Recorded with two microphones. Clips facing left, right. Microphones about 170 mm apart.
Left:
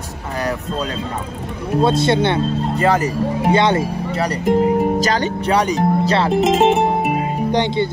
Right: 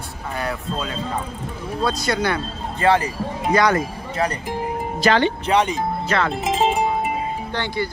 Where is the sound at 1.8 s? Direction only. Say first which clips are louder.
Left 7 dB; 25° left (ahead or behind).